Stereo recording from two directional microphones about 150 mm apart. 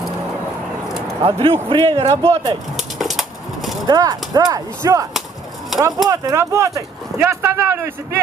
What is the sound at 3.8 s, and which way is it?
Speech, 25° right (ahead or behind).